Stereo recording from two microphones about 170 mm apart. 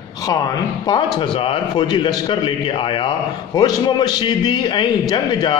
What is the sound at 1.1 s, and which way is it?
A man's voice, 30° left (ahead or behind).